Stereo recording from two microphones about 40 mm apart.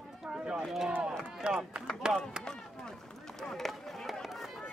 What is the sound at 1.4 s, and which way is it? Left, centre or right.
Run, right.